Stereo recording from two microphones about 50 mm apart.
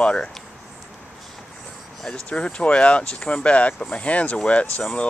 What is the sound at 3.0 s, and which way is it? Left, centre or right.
Speech, centre.